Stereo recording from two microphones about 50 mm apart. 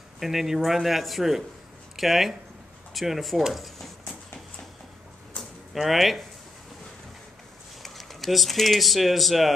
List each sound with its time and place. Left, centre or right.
0.2 s speech: centre
5.4 s a sound: left
5.8 s speech: centre
7.8 s speech: centre